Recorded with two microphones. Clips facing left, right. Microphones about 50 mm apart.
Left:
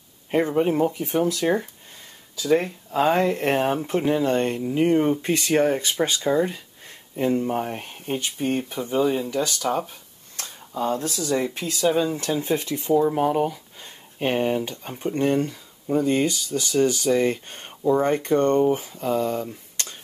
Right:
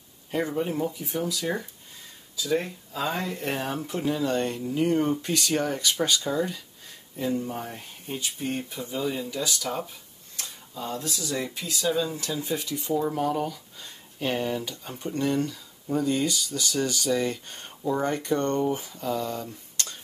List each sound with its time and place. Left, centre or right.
0.3 s speech: left
7.2 s speech: left
13.1 s speech: left
19.3 s a sound: left